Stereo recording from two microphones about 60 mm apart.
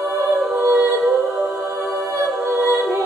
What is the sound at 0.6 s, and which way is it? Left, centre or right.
A capella, right.